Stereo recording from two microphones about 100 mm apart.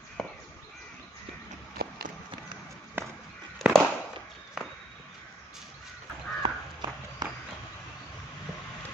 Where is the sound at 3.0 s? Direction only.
20° right (ahead or behind).